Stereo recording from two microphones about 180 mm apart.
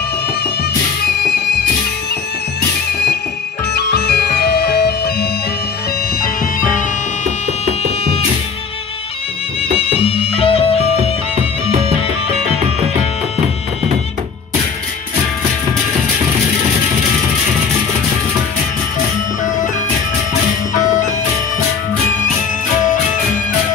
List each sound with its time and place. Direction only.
1.3 s music: 65° left (ahead or behind)
3.7 s music: 60° left (ahead or behind)
6.2 s music: 50° left (ahead or behind)
7.6 s music: 35° left (ahead or behind)
9.8 s music: 30° left (ahead or behind)